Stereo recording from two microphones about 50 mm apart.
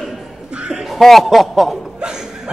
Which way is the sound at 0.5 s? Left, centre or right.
Centre.